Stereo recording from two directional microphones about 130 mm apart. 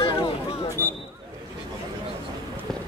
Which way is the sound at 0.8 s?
25° right (ahead or behind).